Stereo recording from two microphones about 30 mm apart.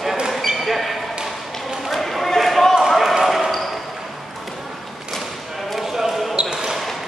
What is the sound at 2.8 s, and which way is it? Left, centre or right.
Basketball bounce, centre.